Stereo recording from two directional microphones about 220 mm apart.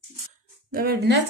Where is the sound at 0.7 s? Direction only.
45° right (ahead or behind).